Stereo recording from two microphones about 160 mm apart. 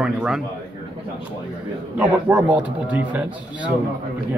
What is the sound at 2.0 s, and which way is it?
A man's voice, 10° right (ahead or behind).